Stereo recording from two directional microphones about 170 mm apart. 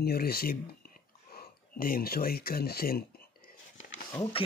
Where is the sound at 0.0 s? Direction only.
65° left (ahead or behind).